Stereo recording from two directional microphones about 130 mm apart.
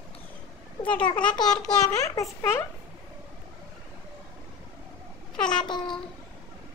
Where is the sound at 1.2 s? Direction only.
35° left (ahead or behind).